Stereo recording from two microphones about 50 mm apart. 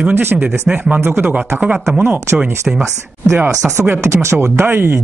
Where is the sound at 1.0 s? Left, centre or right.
Right.